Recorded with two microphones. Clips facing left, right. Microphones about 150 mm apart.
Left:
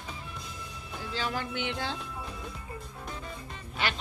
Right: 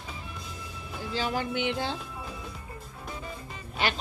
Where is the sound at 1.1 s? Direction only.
15° right (ahead or behind).